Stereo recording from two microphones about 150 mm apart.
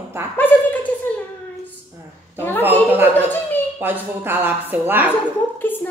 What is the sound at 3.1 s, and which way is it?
Speech, 15° left (ahead or behind).